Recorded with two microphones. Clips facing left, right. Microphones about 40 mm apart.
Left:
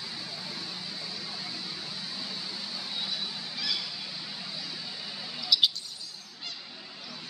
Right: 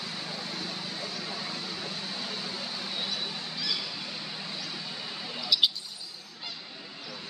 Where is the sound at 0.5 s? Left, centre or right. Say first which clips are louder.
Right 3 dB; right.